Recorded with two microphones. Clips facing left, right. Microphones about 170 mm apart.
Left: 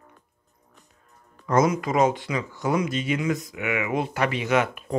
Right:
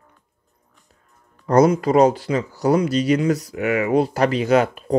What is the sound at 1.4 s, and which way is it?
Speech, 35° right (ahead or behind).